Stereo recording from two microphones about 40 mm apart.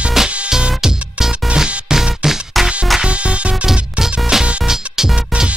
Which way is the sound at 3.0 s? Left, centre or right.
Right.